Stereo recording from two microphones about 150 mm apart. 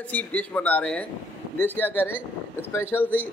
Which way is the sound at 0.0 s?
10° left (ahead or behind).